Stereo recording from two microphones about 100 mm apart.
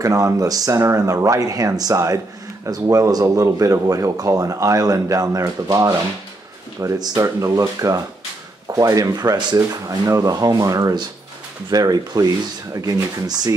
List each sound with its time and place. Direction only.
0.0 s speech: 35° right (ahead or behind)